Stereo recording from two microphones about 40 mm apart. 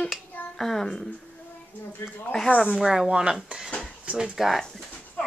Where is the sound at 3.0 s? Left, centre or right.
Right.